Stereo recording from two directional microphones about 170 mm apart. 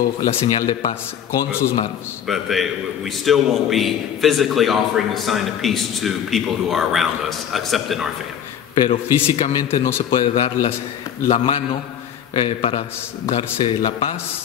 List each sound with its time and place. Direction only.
0.3 s speech: 30° left (ahead or behind)
2.2 s a man's voice: centre (ahead or behind)
8.7 s speech: 35° left (ahead or behind)